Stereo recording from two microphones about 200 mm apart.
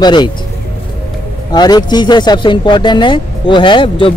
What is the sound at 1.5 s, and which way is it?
Speech, 20° left (ahead or behind).